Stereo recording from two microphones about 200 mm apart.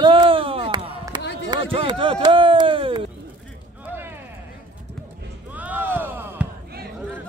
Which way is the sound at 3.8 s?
10° right (ahead or behind).